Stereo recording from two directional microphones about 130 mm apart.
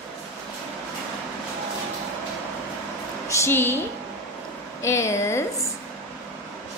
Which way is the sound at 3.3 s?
20° left (ahead or behind).